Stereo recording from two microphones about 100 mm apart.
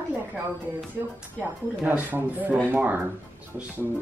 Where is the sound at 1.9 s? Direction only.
15° right (ahead or behind).